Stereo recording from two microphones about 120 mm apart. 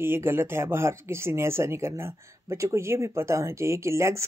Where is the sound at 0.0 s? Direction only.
20° right (ahead or behind).